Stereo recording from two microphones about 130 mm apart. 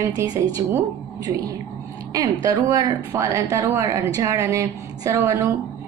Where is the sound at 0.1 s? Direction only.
30° right (ahead or behind).